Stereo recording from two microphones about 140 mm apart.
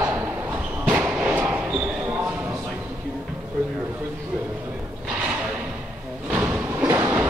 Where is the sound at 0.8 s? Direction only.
15° right (ahead or behind).